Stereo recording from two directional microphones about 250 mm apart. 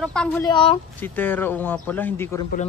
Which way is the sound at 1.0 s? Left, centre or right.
Centre.